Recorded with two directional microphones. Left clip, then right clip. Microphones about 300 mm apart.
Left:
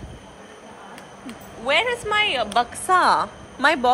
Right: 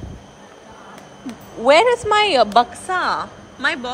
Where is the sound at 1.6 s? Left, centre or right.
Centre.